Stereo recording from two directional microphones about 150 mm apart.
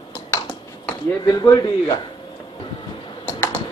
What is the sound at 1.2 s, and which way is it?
Speech, 25° left (ahead or behind).